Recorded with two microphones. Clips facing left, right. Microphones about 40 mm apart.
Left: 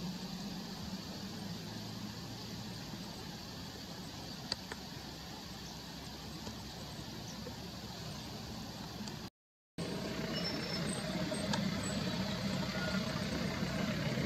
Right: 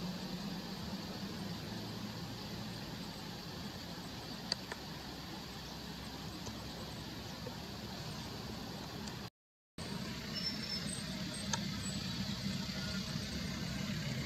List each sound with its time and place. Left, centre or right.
9.8 s vehicle: centre